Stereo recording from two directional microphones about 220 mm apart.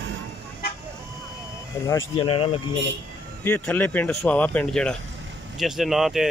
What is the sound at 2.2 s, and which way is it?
Speech, 25° left (ahead or behind).